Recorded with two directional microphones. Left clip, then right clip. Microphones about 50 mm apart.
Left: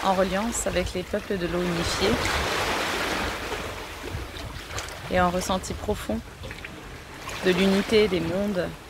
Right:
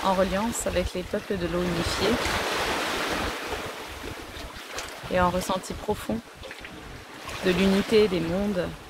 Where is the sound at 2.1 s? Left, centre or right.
Left.